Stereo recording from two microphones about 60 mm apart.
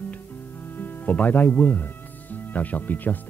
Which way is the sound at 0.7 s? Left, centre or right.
Left.